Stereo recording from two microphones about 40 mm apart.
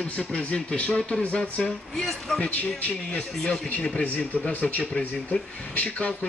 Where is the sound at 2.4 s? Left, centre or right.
Left.